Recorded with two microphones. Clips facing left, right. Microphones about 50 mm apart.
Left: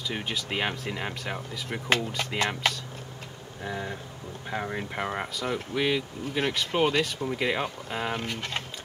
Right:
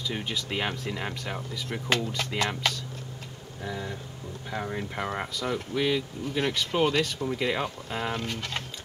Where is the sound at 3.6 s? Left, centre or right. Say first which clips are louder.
Left 1 dB; left.